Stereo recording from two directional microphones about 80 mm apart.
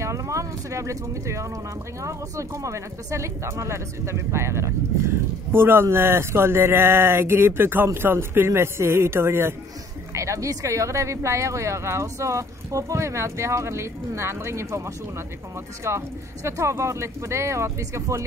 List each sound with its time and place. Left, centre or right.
0.0 s speech: right
15.8 s speech: right